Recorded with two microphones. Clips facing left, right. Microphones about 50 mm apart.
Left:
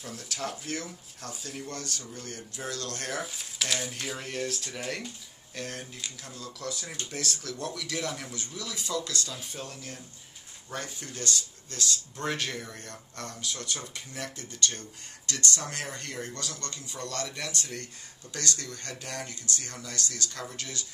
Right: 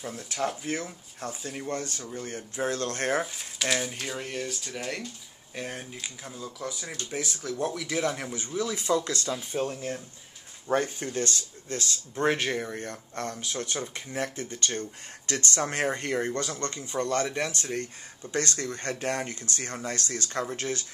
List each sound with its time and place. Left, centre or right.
0.0 s speech: centre
3.3 s speech: centre
5.5 s speech: centre; by 20.8 s right